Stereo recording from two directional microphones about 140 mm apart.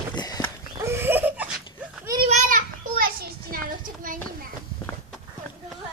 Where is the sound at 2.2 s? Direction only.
65° right (ahead or behind); by 3.2 s 90° right.